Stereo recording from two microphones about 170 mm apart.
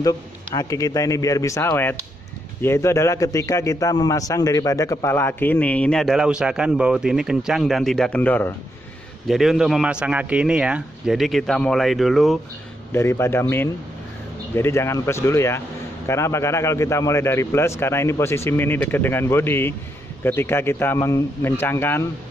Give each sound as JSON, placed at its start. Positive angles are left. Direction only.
{"t": 0.6, "sound": "a man's voice", "side_deg": 20}
{"t": 9.3, "sound": "speech", "side_deg": 0}
{"t": 12.9, "sound": "a man's voice", "side_deg": 15}